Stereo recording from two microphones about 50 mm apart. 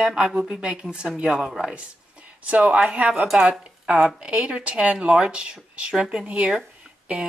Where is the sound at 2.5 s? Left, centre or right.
Right.